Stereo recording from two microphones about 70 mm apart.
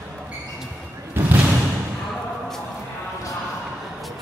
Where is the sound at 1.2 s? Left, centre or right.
Right.